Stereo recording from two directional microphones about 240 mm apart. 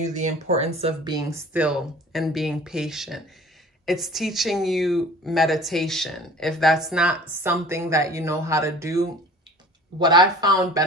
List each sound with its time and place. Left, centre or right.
0.0 s speech: right